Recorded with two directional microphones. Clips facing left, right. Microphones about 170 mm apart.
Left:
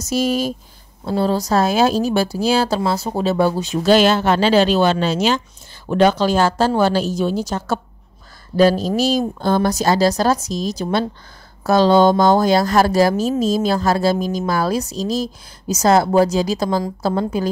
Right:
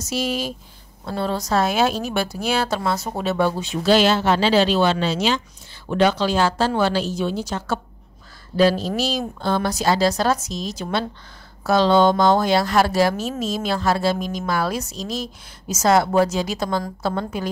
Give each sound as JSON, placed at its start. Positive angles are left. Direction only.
{"t": 0.0, "sound": "a woman's voice", "side_deg": 45}